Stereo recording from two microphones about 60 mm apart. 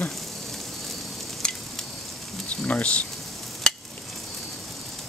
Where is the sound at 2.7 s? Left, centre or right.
Left.